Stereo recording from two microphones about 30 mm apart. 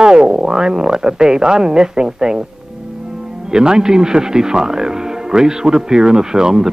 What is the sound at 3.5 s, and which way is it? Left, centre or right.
Speech, right.